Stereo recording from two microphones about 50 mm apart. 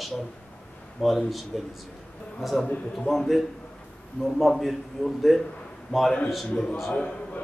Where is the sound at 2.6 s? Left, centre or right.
Left.